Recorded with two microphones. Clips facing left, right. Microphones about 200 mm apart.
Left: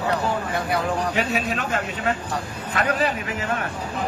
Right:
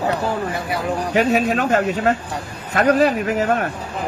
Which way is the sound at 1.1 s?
45° right (ahead or behind).